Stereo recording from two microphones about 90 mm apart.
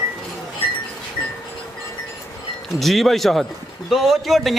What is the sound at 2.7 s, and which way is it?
A man's voice, centre (ahead or behind).